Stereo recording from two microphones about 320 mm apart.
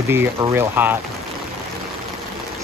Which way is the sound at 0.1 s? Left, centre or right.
Centre.